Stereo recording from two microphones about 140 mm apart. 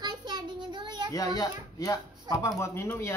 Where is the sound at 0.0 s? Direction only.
30° right (ahead or behind).